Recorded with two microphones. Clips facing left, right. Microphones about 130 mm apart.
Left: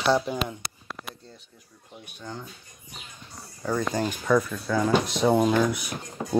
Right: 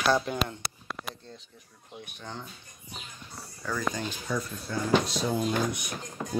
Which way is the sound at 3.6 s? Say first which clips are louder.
Left 6 dB; 35° left (ahead or behind).